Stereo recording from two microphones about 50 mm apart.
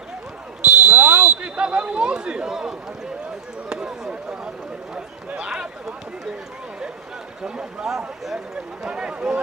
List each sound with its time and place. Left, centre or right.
0.7 s a sound: centre
3.6 s chop: centre
4.9 s speech: centre
7.4 s a man's voice: centre